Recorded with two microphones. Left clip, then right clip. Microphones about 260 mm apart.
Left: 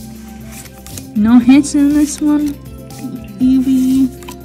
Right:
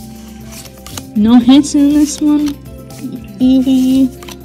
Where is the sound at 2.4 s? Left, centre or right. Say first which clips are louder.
Right 2 dB; centre.